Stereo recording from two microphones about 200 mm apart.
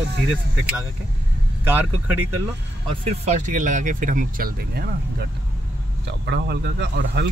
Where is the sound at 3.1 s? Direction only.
35° right (ahead or behind); by 4.9 s 50° right (ahead or behind).